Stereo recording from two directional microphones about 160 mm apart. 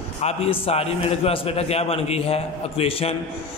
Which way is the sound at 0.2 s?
40° left (ahead or behind).